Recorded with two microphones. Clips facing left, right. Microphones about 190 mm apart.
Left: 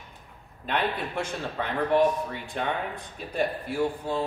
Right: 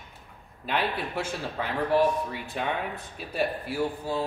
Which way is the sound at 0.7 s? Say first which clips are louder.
Left 1 dB; 5° right (ahead or behind).